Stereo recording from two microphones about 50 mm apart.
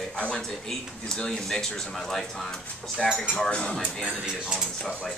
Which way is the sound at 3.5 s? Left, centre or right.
Centre.